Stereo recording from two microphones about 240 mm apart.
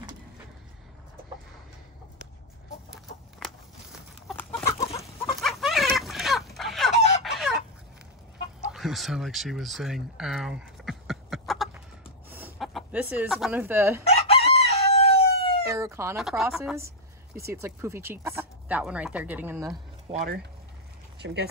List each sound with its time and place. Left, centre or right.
2.9 s chicken: centre
5.0 s a sound: centre
8.7 s a sound: centre
12.3 s speech: centre
14.0 s chicken: left
15.6 s a woman's voice: centre
16.7 s a sound: centre
17.5 s speech: centre
20.1 s speech: right